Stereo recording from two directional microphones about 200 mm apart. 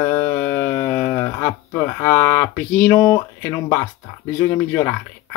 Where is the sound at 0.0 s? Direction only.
20° left (ahead or behind).